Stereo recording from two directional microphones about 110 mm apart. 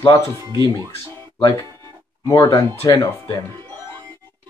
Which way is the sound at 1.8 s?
30° left (ahead or behind).